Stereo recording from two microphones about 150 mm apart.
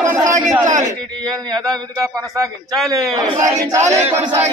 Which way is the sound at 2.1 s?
25° right (ahead or behind).